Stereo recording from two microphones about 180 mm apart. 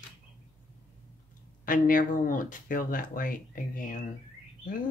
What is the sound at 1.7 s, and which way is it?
Speech, 50° left (ahead or behind).